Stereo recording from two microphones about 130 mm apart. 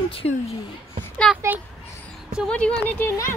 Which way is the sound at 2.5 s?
10° left (ahead or behind).